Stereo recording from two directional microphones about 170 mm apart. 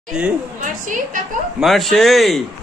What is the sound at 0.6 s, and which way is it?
Speech, 50° right (ahead or behind).